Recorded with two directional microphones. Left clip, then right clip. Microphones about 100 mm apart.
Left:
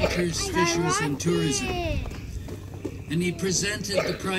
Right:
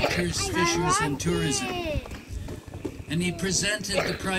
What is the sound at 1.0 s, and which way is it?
Speech, 20° right (ahead or behind).